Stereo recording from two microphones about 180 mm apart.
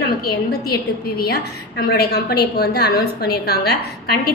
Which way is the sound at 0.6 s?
60° left (ahead or behind).